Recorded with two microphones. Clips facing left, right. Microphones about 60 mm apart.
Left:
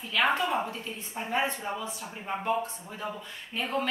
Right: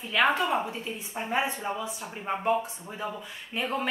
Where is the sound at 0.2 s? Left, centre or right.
Centre.